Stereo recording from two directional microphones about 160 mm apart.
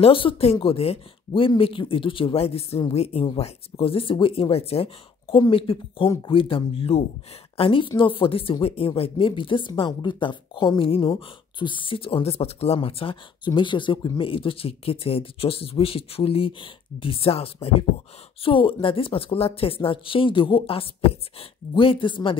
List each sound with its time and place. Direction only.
0.0 s speech: 35° left (ahead or behind)